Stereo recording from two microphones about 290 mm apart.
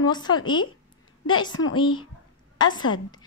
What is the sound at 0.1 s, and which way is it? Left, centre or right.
A woman's voice, centre.